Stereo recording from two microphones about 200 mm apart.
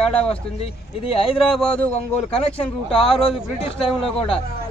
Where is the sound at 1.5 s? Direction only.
Centre (ahead or behind).